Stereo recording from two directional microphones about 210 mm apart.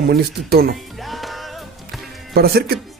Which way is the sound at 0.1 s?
45° right (ahead or behind).